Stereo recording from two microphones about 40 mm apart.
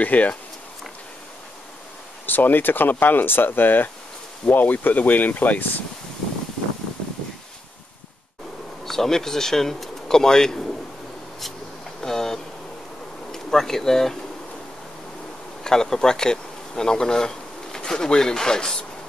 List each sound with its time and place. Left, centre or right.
0.0 s speech: left
2.2 s speech: left
8.8 s speech: centre
12.0 s a sound: centre
13.3 s speech: centre
15.6 s bee: centre